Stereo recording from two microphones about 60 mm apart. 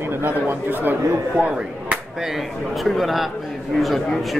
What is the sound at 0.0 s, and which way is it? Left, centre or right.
Speech, right.